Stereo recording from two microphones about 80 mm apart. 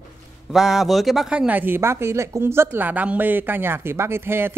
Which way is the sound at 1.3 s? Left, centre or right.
Centre.